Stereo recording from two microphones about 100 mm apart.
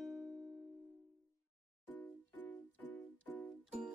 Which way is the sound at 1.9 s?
15° left (ahead or behind).